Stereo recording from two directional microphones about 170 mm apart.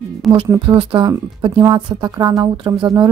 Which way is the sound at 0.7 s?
25° right (ahead or behind).